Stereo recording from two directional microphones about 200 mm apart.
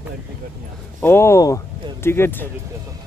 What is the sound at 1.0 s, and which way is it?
Speech, 10° left (ahead or behind).